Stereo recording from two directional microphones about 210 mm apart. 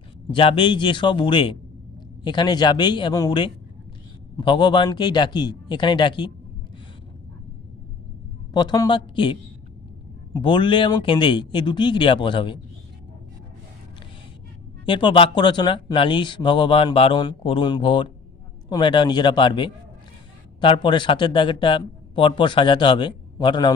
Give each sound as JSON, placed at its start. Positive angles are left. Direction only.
{"t": 0.3, "sound": "speech", "side_deg": 25}
{"t": 8.5, "sound": "speech", "side_deg": 20}
{"t": 14.9, "sound": "speech", "side_deg": 25}